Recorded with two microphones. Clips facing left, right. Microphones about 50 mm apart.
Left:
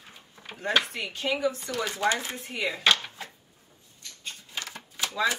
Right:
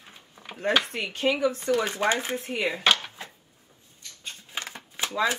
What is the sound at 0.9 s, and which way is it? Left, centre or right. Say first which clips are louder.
Speech: right 4 dB; right.